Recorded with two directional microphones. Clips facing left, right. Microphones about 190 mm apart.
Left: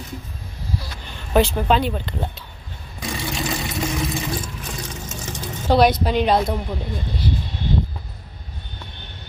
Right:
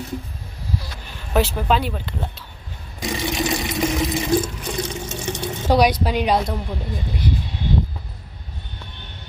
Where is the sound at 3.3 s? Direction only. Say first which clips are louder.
Right 3 dB; 20° right (ahead or behind).